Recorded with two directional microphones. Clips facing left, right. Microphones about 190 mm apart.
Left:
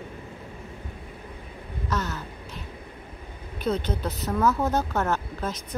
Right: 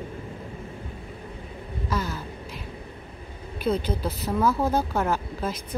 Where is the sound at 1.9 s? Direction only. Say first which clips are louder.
Even; 10° right (ahead or behind).